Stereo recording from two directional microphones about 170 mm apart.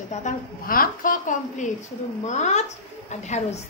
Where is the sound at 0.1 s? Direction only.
50° left (ahead or behind).